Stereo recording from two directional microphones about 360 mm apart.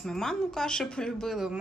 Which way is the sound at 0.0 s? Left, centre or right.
Centre.